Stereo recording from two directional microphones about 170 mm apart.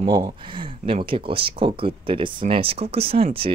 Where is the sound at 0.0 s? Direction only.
30° right (ahead or behind).